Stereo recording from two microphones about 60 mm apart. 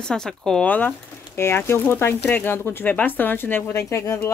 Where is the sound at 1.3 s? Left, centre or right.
Left.